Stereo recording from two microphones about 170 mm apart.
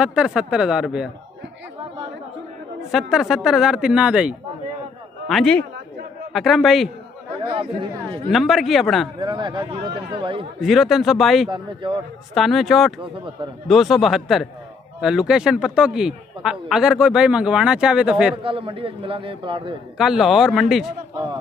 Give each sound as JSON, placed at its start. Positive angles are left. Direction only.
{"t": 0.0, "sound": "a man's voice", "side_deg": -5}
{"t": 2.9, "sound": "a man's voice", "side_deg": -5}
{"t": 5.3, "sound": "a man's voice", "side_deg": 5}
{"t": 7.4, "sound": "speech", "side_deg": -30}
{"t": 8.3, "sound": "a man's voice", "side_deg": 0}
{"t": 9.2, "sound": "a man's voice", "side_deg": -25}
{"t": 10.6, "sound": "a man's voice", "side_deg": 0}
{"t": 11.5, "sound": "a man's voice", "side_deg": -30}
{"t": 12.4, "sound": "a man's voice", "side_deg": 0}
{"t": 13.0, "sound": "speech", "side_deg": -30}
{"t": 13.7, "sound": "a man's voice", "side_deg": 0}
{"t": 18.4, "sound": "speech", "side_deg": -30}
{"t": 20.0, "sound": "a man's voice", "side_deg": 0}